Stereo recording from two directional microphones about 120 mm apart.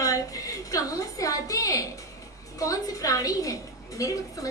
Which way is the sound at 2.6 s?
30° left (ahead or behind).